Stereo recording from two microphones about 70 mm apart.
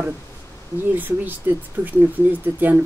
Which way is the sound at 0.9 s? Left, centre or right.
Right.